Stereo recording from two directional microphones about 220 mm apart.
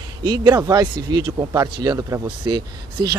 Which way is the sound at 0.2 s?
20° right (ahead or behind).